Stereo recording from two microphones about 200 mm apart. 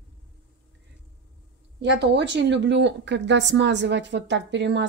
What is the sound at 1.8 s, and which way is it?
Speech, 60° right (ahead or behind).